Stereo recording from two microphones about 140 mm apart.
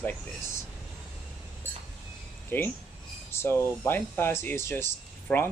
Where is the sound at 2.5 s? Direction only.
15° left (ahead or behind).